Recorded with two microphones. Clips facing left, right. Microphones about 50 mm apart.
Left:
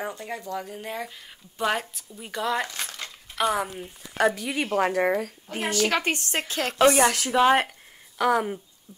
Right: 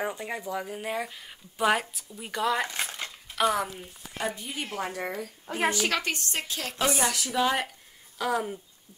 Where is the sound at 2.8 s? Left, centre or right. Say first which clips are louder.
Right 1 dB; centre.